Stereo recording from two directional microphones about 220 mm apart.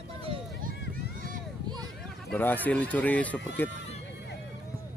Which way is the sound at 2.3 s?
10° left (ahead or behind).